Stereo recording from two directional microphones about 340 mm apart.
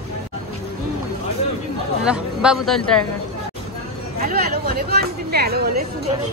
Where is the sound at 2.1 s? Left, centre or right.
Centre.